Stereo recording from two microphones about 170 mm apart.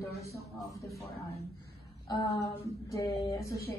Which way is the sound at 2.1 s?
25° left (ahead or behind).